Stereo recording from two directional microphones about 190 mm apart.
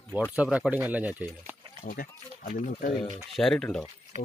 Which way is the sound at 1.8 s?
50° left (ahead or behind).